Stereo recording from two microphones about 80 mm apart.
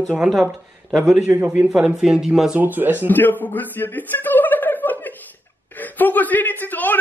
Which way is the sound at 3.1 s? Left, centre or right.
Left.